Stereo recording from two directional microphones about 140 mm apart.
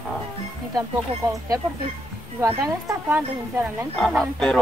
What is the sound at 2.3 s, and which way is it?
Speech, 20° right (ahead or behind).